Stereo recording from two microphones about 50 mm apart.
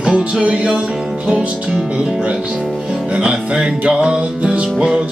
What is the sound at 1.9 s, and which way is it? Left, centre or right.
Music, centre.